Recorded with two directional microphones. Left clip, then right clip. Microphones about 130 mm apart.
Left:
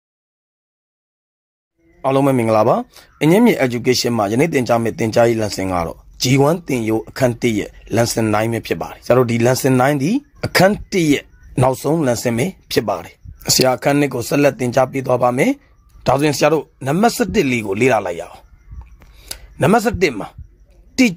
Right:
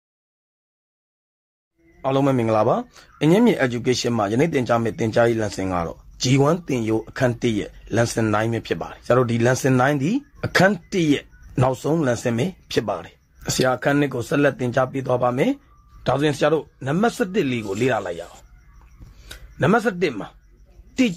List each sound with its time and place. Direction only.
2.0 s speech: 40° left (ahead or behind)
2.9 s speech: 35° left (ahead or behind)
11.5 s speech: 30° left (ahead or behind)
11.9 s speech: 40° left (ahead or behind)
19.2 s a woman's voice: 45° left (ahead or behind)